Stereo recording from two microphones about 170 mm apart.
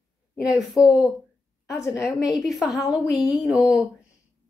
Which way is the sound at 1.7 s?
15° left (ahead or behind).